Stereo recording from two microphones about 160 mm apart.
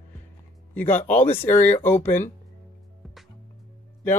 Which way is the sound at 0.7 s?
10° left (ahead or behind).